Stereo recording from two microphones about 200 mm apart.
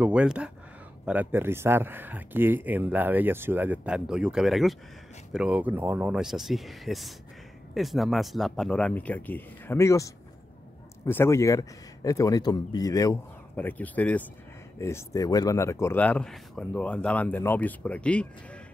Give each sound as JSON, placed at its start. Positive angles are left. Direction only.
{"t": 0.0, "sound": "a man's voice", "side_deg": -5}